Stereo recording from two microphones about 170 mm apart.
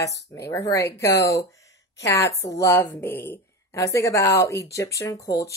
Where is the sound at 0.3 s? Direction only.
20° left (ahead or behind).